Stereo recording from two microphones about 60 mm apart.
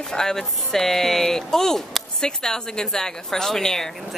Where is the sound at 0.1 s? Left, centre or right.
Centre.